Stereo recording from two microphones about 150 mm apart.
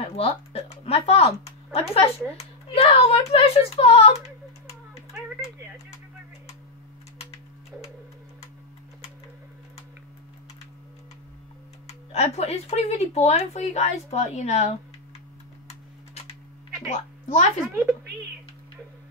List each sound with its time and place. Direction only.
0.0 s speech: 40° left (ahead or behind)
12.1 s speech: 45° left (ahead or behind)
16.9 s a woman's voice: 55° left (ahead or behind)